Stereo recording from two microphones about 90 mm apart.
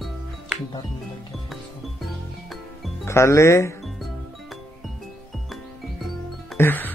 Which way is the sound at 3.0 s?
30° left (ahead or behind).